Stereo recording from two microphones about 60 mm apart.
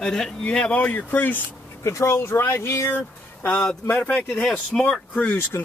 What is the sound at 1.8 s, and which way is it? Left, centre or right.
Speech, left.